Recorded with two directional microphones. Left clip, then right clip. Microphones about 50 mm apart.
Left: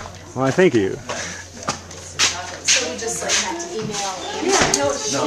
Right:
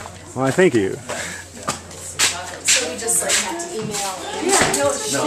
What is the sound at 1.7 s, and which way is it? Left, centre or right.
Shuffle, centre.